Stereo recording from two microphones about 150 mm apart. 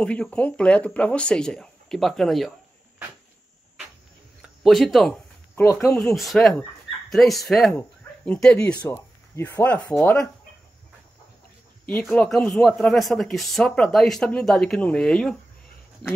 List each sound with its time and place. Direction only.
0.0 s speech: 5° left (ahead or behind)
4.4 s speech: centre (ahead or behind)
5.6 s speech: 20° left (ahead or behind)
5.9 s speech: centre (ahead or behind)
11.9 s speech: 5° left (ahead or behind)